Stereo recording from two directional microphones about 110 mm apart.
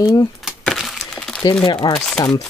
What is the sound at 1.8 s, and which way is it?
Speech, 40° left (ahead or behind).